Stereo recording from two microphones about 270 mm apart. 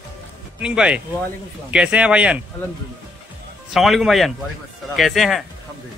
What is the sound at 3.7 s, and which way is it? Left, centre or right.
A man's voice, centre.